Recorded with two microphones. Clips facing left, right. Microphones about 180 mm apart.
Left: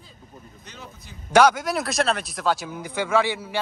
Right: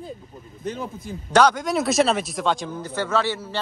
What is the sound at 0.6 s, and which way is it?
Speech, 50° right (ahead or behind).